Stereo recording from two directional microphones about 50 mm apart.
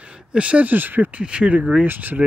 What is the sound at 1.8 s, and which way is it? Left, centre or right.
Speech, right.